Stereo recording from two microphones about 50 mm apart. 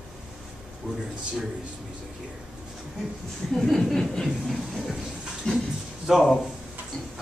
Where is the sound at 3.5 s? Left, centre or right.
Centre.